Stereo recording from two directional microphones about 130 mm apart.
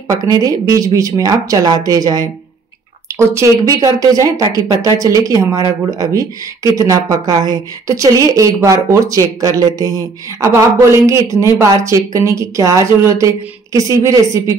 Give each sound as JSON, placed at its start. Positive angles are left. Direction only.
{"t": 0.1, "sound": "speech", "side_deg": -25}